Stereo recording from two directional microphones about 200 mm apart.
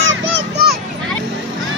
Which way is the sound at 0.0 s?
65° right (ahead or behind).